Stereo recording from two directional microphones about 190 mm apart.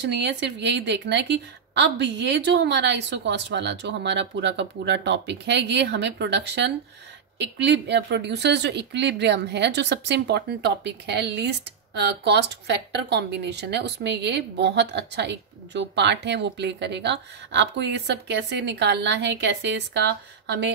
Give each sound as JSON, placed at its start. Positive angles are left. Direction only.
{"t": 0.1, "sound": "a woman's voice", "side_deg": -65}